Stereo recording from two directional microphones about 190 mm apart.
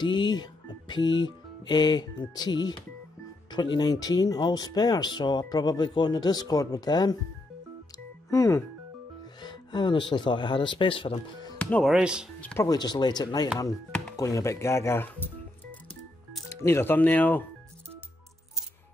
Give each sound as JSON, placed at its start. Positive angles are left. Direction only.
{"t": 0.0, "sound": "speech", "side_deg": 25}
{"t": 3.4, "sound": "speech", "side_deg": 25}
{"t": 8.3, "sound": "speech", "side_deg": 15}
{"t": 11.5, "sound": "speech", "side_deg": 5}
{"t": 12.4, "sound": "speech", "side_deg": 5}
{"t": 12.6, "sound": "speech", "side_deg": 20}